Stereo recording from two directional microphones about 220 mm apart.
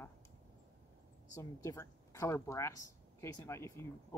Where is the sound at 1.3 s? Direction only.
15° left (ahead or behind).